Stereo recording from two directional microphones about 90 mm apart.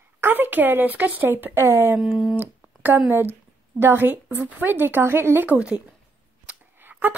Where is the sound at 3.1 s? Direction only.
25° right (ahead or behind).